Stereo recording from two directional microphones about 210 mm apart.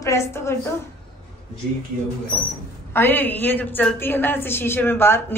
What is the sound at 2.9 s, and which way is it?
A woman's voice, 10° left (ahead or behind).